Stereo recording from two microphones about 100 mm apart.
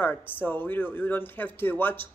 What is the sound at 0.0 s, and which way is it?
A woman's voice, 20° left (ahead or behind).